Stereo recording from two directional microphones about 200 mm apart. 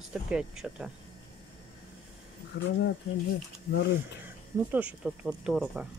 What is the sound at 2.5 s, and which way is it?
Speech, 55° left (ahead or behind).